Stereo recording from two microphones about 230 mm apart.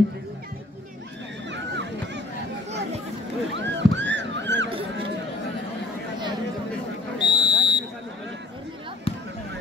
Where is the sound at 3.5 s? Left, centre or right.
Right.